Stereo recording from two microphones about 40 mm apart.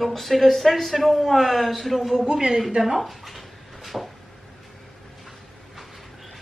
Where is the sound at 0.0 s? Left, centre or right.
Centre.